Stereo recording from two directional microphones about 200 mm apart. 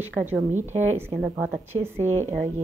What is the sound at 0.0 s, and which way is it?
A woman's voice, 10° right (ahead or behind).